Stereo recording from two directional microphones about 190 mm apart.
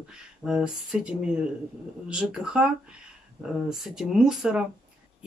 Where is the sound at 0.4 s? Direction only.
5° right (ahead or behind).